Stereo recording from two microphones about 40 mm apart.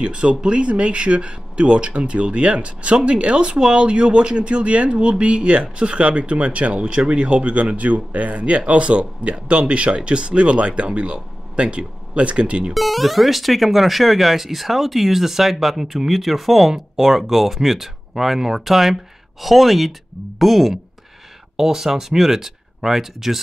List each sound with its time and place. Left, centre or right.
0.0 s speech: right
3.5 s speech: centre
12.7 s speech: centre